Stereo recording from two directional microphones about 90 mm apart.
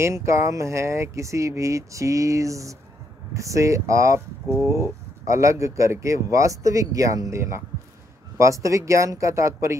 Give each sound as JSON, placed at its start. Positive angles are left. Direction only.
{"t": 0.0, "sound": "speech", "side_deg": -30}